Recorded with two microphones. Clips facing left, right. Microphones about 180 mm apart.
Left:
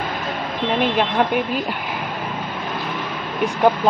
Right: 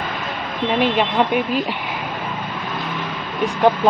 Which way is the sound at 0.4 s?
Centre (ahead or behind).